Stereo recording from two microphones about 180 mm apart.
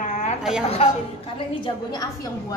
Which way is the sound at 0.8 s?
35° left (ahead or behind).